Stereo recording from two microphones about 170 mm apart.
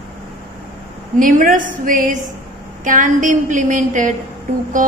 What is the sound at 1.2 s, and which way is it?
A woman's voice, 55° right (ahead or behind).